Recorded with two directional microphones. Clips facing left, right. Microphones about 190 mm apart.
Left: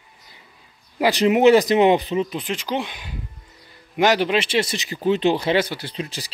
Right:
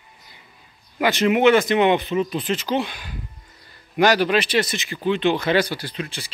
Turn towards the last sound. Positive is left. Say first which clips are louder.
# even
turn(degrees=25)  # may be behind; listen again after turning